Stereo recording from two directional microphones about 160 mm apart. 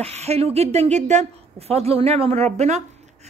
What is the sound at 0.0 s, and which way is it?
Speech, 40° right (ahead or behind).